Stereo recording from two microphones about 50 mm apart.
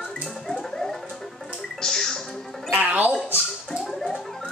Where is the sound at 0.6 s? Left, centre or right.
Centre.